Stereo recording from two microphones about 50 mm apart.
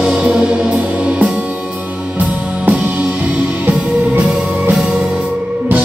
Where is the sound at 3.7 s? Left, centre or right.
Right.